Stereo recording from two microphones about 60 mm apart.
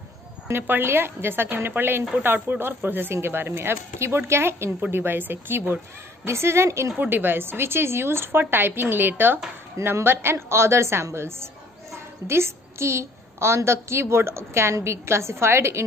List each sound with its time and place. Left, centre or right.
0.5 s speech: right
6.2 s a woman's voice: right
7.0 s a woman's voice: right